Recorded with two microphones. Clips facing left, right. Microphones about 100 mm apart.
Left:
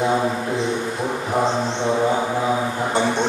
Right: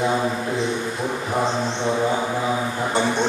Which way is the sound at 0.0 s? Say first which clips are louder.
Left 2 dB; 20° left (ahead or behind).